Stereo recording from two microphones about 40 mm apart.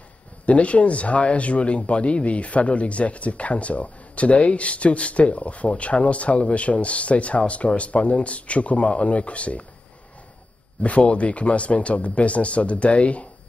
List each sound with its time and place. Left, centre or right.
0.5 s speech: left
10.8 s speech: left